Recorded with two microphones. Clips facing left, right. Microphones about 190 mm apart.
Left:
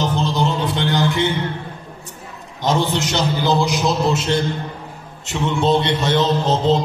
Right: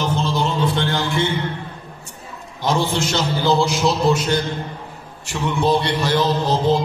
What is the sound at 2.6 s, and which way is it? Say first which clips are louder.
Music: left 1 dB; 20° left (ahead or behind).